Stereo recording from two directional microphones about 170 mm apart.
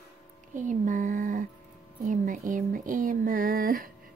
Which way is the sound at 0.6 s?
50° right (ahead or behind).